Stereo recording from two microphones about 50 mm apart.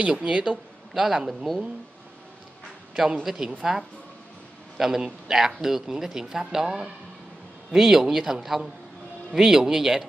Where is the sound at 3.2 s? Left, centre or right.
Centre.